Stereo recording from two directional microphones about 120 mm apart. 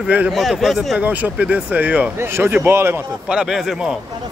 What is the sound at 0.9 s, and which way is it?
Speech, 15° right (ahead or behind).